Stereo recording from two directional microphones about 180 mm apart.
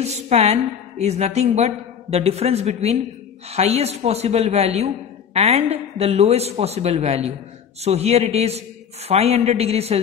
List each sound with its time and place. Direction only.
0.0 s a woman's voice: 35° right (ahead or behind)